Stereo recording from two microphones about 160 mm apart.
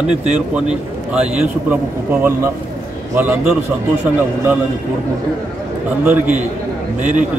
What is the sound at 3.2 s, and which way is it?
Speech, 10° right (ahead or behind).